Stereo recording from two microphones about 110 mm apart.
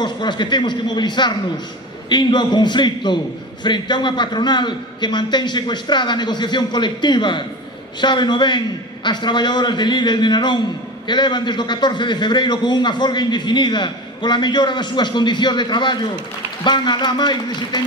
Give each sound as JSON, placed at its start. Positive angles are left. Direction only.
{"t": 0.0, "sound": "a man's voice", "side_deg": 45}